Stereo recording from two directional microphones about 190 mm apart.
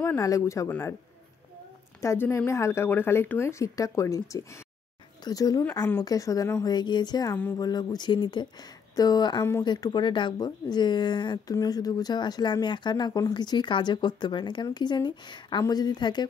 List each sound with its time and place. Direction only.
0.0 s speech: 15° left (ahead or behind)
2.0 s speech: 15° left (ahead or behind)